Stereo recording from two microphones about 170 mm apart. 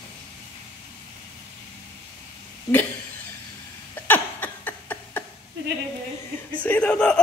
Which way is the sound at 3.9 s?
10° left (ahead or behind).